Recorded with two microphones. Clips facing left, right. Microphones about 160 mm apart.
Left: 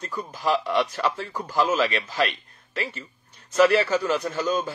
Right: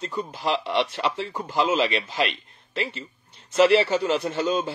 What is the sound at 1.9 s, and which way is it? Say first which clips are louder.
Speech: even; 40° left (ahead or behind).